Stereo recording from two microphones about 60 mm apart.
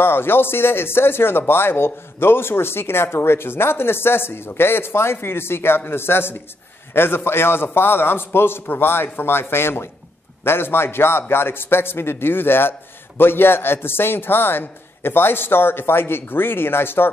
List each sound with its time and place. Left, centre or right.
0.0 s a man's voice: left